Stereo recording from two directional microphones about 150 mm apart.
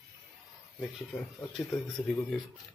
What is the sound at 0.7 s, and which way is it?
Speech, centre (ahead or behind).